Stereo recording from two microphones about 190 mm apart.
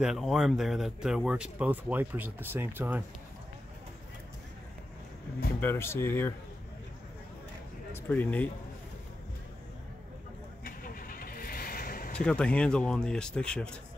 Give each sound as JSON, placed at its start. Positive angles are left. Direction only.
{"t": 0.0, "sound": "speech", "side_deg": 0}
{"t": 5.6, "sound": "speech", "side_deg": 10}
{"t": 7.9, "sound": "speech", "side_deg": 10}
{"t": 10.6, "sound": "vehicle", "side_deg": 50}
{"t": 12.2, "sound": "speech", "side_deg": 5}